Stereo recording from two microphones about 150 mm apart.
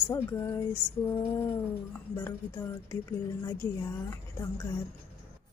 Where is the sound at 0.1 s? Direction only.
20° left (ahead or behind).